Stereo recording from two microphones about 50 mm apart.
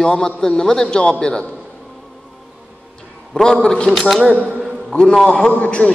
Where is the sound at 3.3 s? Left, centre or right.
Centre.